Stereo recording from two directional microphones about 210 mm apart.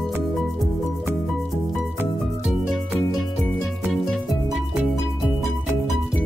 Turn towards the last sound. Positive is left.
turn(degrees=0)  # may be behind; listen again after turning